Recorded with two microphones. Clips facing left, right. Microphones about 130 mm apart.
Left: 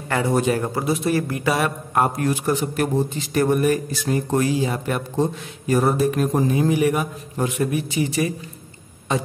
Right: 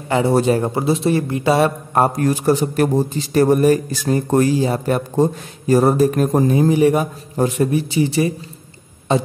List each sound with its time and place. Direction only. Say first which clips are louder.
0.1 s a man's voice: right 5 dB; 30° right (ahead or behind)